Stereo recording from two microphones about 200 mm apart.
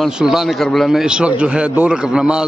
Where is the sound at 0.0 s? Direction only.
Centre (ahead or behind).